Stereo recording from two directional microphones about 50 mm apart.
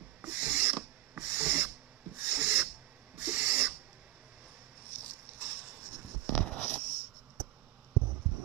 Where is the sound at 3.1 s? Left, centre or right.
Right.